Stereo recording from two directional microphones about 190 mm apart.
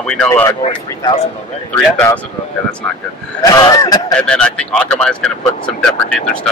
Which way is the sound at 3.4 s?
20° left (ahead or behind).